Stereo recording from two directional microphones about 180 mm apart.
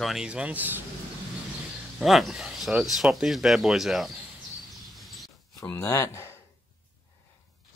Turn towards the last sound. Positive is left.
turn(degrees=15)  # may be behind; listen again after turning